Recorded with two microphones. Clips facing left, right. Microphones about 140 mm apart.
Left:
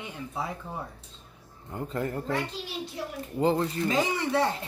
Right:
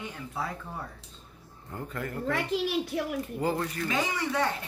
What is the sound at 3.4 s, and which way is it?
Speech, 25° left (ahead or behind).